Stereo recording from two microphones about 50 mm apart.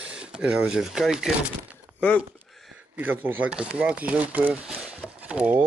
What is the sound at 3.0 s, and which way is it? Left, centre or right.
Speech, right.